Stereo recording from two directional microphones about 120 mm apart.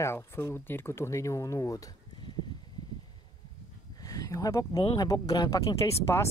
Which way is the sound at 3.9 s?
30° left (ahead or behind).